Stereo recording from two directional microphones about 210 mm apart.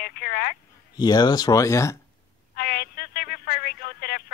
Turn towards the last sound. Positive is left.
turn(degrees=45)  # may be behind; listen again after turning